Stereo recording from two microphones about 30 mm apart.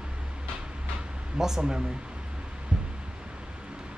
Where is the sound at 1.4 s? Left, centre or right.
Centre.